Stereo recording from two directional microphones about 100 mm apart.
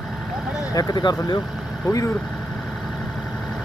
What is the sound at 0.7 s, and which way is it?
Speech, 40° left (ahead or behind).